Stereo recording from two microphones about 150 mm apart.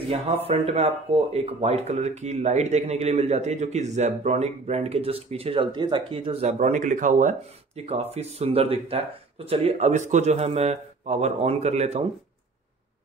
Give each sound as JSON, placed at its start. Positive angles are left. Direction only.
{"t": 0.5, "sound": "speech", "side_deg": -45}
{"t": 6.4, "sound": "speech", "side_deg": -55}